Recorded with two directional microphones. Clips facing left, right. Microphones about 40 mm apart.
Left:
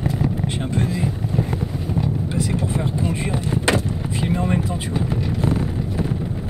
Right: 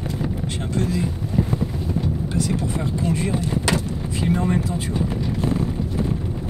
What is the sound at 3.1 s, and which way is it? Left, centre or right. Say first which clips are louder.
Speech: right 1 dB; left.